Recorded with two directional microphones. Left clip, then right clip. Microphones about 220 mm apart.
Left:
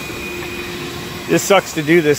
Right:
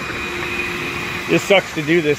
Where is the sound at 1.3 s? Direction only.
5° left (ahead or behind).